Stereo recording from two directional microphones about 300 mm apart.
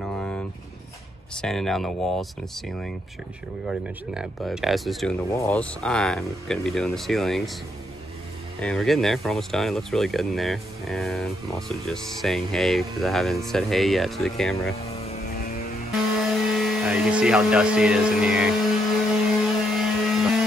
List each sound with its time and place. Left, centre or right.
0.0 s vehicle: centre
1.3 s speech: centre
8.5 s speech: centre
15.0 s vehicle: left
16.2 s speech: centre
19.4 s a sound: centre